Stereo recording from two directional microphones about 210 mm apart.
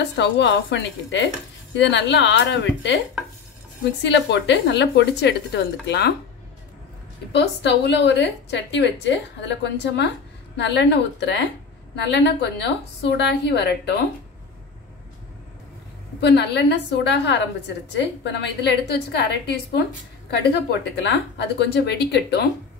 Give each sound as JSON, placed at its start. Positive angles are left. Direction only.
{"t": 0.1, "sound": "a woman's voice", "side_deg": 55}
{"t": 4.0, "sound": "a woman's voice", "side_deg": 55}
{"t": 7.3, "sound": "a woman's voice", "side_deg": 55}
{"t": 16.2, "sound": "a woman's voice", "side_deg": 55}
{"t": 20.9, "sound": "a woman's voice", "side_deg": 55}